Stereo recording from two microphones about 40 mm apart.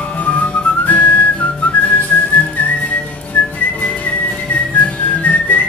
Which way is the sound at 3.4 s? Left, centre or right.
Left.